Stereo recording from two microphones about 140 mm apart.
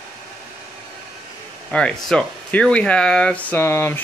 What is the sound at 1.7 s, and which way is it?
Speech, 5° left (ahead or behind).